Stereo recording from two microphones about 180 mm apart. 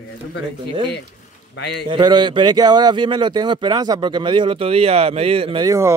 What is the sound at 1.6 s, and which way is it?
Speech, 70° left (ahead or behind).